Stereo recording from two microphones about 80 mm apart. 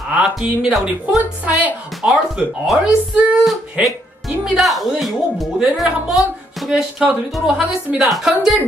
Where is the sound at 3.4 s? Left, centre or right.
Centre.